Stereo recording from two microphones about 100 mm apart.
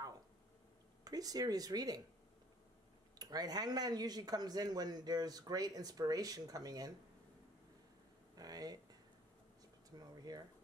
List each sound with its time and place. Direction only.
1.0 s speech: 40° right (ahead or behind)
3.2 s speech: 40° right (ahead or behind)
8.4 s speech: 40° right (ahead or behind)
9.8 s a sound: 40° right (ahead or behind)